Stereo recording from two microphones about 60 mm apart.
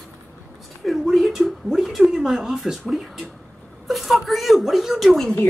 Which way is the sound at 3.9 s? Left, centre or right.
Centre.